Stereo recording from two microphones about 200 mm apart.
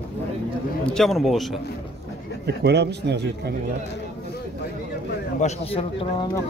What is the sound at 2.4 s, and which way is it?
A man's voice, 55° right (ahead or behind).